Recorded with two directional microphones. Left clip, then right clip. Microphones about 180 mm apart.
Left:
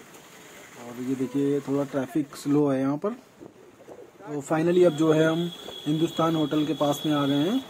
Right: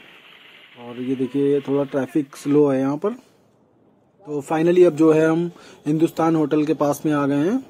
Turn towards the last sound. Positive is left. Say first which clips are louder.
# right 5 dB
turn(degrees=-35)  # may be behind; listen again after turning